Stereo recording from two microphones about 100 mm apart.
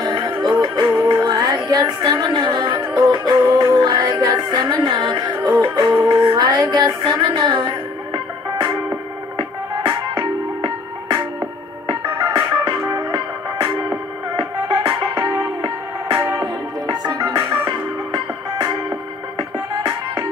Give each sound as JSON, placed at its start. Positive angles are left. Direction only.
{"t": 0.0, "sound": "music", "side_deg": -45}
{"t": 9.4, "sound": "music", "side_deg": -50}
{"t": 12.9, "sound": "music", "side_deg": -35}
{"t": 14.3, "sound": "music", "side_deg": -50}
{"t": 16.3, "sound": "music", "side_deg": -40}